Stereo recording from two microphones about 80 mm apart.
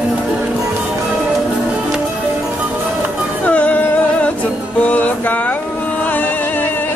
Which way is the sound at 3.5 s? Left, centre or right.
Centre.